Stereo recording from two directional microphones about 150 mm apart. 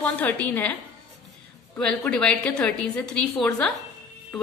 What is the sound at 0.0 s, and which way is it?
Speech, 10° left (ahead or behind).